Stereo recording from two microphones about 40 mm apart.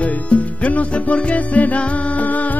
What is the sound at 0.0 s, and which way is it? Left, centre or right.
Music, left.